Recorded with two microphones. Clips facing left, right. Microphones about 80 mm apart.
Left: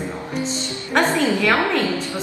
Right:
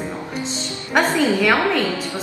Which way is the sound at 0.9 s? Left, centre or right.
Centre.